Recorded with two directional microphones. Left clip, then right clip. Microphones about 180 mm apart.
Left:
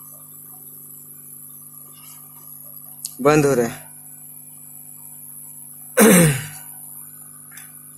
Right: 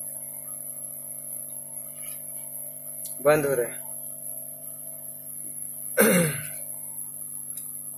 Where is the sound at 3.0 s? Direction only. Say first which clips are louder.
Left 5 dB; 55° left (ahead or behind).